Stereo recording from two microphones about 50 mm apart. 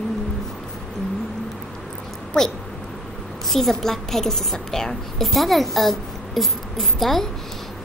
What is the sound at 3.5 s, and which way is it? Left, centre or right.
A woman's voice, centre.